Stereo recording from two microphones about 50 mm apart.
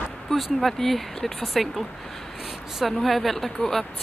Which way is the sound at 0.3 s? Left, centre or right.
Centre.